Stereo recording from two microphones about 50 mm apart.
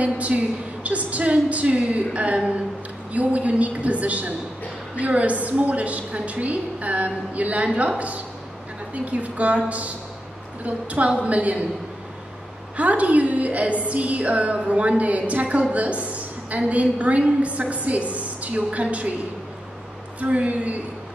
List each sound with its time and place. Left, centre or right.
0.0 s a woman's voice: right
8.9 s a woman's voice: right
12.7 s a woman's voice: right
20.2 s a woman's voice: right